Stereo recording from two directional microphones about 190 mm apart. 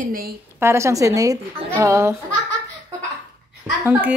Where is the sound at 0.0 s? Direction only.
50° right (ahead or behind).